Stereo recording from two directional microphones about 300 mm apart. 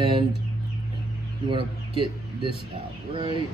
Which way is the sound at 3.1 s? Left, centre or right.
Centre.